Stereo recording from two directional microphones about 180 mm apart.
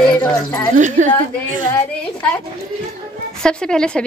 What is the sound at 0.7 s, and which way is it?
Speech, 45° right (ahead or behind).